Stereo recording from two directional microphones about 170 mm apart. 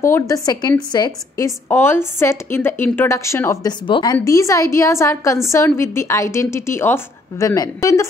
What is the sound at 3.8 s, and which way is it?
A woman's voice, 30° left (ahead or behind).